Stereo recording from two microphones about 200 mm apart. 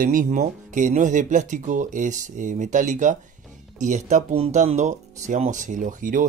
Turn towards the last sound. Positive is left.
turn(degrees=-40)  # may be behind; listen again after turning